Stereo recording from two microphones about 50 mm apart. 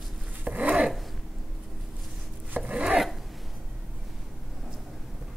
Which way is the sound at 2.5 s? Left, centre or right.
Right.